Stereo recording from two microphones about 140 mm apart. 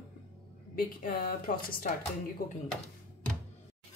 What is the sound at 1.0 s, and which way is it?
Speech, 90° left.